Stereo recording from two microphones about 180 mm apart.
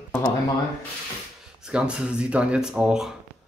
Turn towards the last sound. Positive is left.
turn(degrees=-5)  # may be behind; listen again after turning